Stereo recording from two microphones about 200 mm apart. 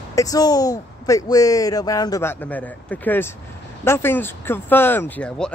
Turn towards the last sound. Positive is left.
turn(degrees=5)  # may be behind; listen again after turning